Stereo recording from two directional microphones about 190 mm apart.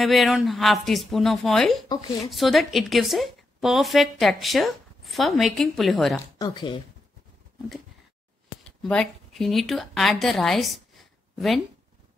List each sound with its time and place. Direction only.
0.0 s a woman's voice: centre (ahead or behind)
6.3 s speech: 20° left (ahead or behind)
8.6 s speech: 5° left (ahead or behind)